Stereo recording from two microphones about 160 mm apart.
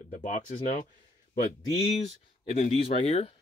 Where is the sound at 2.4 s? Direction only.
40° left (ahead or behind).